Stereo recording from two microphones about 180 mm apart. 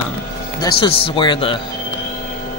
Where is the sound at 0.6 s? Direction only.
30° left (ahead or behind).